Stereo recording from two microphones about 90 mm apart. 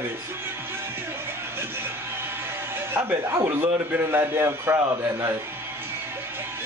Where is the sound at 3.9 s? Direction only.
25° right (ahead or behind).